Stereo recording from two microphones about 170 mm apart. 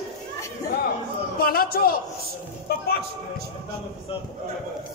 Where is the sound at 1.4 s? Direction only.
60° left (ahead or behind).